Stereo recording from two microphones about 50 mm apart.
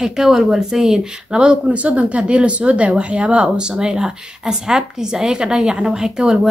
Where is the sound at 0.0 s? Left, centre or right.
Centre.